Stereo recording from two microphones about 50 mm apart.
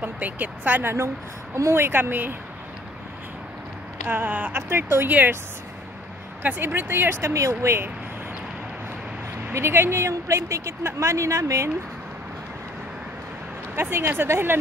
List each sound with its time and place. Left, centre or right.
0.0 s speech: right
0.8 s speech: right
4.1 s speech: right
4.6 s speech: right
6.4 s speech: right
9.5 s speech: right
13.7 s speech: right